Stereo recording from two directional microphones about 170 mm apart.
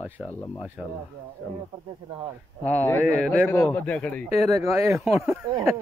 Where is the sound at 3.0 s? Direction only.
10° right (ahead or behind).